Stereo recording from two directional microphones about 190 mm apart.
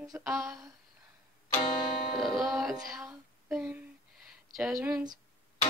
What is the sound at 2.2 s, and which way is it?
Female singing, centre (ahead or behind).